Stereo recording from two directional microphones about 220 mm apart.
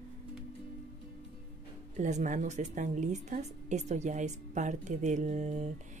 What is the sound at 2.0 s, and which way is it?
A woman's voice, 35° right (ahead or behind).